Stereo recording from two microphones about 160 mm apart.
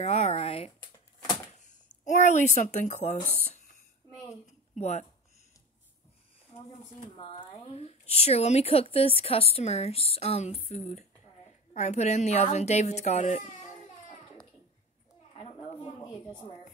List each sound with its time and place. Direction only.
0.0 s speech: 40° left (ahead or behind)
2.0 s a woman's voice: 50° left (ahead or behind)
4.3 s a sound: 45° left (ahead or behind)
7.0 s a woman's voice: 35° left (ahead or behind)